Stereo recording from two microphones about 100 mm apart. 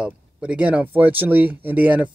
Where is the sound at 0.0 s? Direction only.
10° right (ahead or behind).